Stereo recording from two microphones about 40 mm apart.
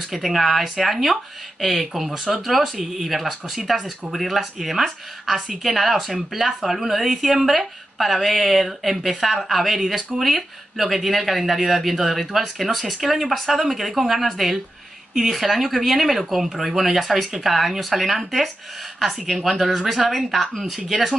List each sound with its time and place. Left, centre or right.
0.1 s a woman's voice: centre